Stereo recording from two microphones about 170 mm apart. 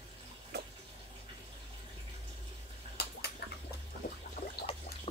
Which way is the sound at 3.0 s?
70° left (ahead or behind).